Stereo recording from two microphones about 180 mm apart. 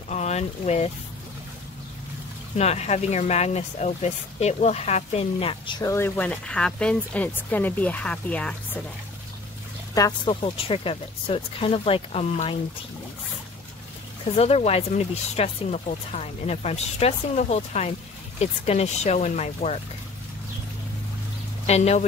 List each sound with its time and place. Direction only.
0.1 s speech: 40° left (ahead or behind)
2.5 s speech: 35° left (ahead or behind); by 8.8 s 5° left (ahead or behind)
9.9 s speech: 20° left (ahead or behind)
10.4 s speech: 30° left (ahead or behind)
14.3 s speech: 35° left (ahead or behind)
21.6 s speech: 35° left (ahead or behind)